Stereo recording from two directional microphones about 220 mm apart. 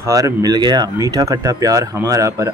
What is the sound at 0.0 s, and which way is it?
Speech, 15° right (ahead or behind).